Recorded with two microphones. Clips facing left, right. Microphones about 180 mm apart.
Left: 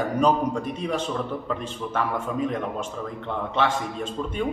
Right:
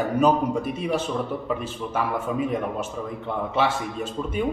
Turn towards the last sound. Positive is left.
turn(degrees=-5)  # may be behind; listen again after turning